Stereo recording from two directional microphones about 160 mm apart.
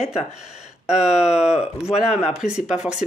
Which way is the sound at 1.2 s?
45° left (ahead or behind).